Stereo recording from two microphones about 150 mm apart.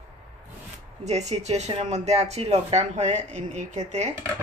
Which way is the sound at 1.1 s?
50° right (ahead or behind).